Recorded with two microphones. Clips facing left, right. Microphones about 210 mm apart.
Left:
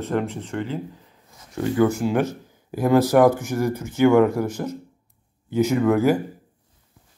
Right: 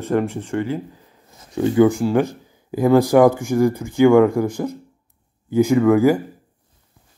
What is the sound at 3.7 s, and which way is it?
A man's voice, 10° right (ahead or behind).